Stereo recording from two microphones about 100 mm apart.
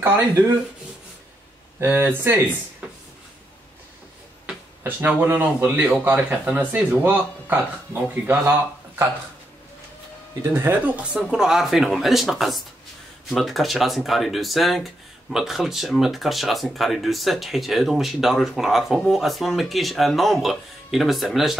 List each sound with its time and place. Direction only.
0.0 s speech: 20° right (ahead or behind)
1.8 s speech: 20° right (ahead or behind)
4.8 s speech: 20° right (ahead or behind)
10.5 s speech: 20° right (ahead or behind)
11.3 s speech: 5° right (ahead or behind)